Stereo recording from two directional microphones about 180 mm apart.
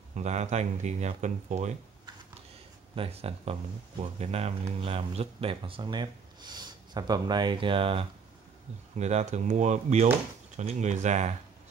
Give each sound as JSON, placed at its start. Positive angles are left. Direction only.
{"t": 0.1, "sound": "speech", "side_deg": -40}
{"t": 3.0, "sound": "speech", "side_deg": -35}